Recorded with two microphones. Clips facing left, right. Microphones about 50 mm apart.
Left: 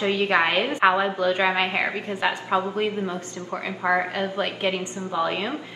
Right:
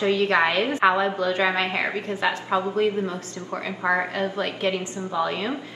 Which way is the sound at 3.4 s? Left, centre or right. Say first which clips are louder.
Even; left.